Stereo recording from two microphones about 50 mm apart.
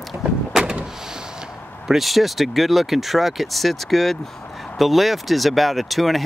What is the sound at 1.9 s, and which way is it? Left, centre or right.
Speech, centre.